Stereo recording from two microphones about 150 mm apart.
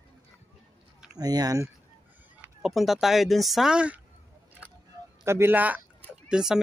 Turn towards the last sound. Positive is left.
turn(degrees=-5)  # may be behind; listen again after turning